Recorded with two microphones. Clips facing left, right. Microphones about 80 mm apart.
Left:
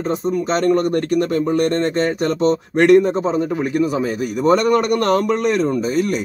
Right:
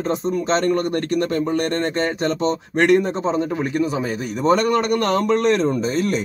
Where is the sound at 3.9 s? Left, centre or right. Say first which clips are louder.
Left 3 dB; right.